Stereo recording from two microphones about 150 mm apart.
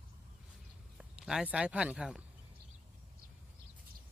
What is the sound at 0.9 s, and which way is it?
Speech, 5° right (ahead or behind).